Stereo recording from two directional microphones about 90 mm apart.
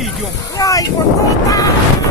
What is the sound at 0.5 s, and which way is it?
Speech, 40° left (ahead or behind).